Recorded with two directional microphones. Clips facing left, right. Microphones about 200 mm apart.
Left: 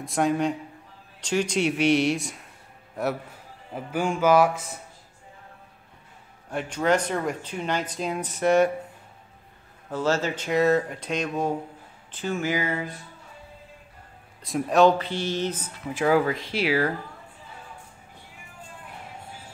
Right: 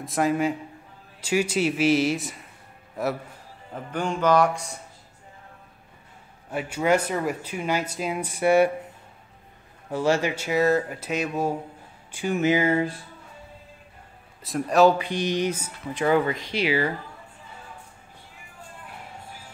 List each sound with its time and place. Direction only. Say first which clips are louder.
0.0 s a man's voice: even; centre (ahead or behind)
6.5 s speech: right 1 dB; 5° right (ahead or behind)
9.8 s speech: right 2 dB; 15° right (ahead or behind); by 12.9 s 30° right (ahead or behind)
14.4 s a man's voice: even; centre (ahead or behind)
15.0 s speech: right 2 dB; 15° right (ahead or behind)
15.9 s a man's voice: even; 5° left (ahead or behind)